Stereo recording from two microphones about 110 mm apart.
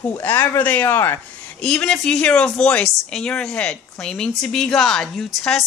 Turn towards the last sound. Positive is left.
turn(degrees=0)  # may be behind; listen again after turning